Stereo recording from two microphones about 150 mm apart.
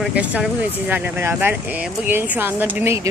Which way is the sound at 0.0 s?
10° right (ahead or behind).